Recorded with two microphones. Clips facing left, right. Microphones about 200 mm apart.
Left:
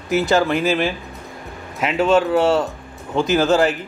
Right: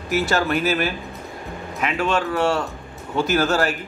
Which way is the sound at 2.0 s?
20° left (ahead or behind).